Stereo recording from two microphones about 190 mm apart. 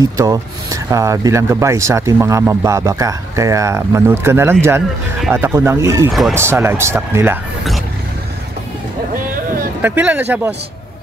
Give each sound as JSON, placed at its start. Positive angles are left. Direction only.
{"t": 0.0, "sound": "speech", "side_deg": -20}
{"t": 9.1, "sound": "a sound", "side_deg": -50}
{"t": 9.8, "sound": "speech", "side_deg": -10}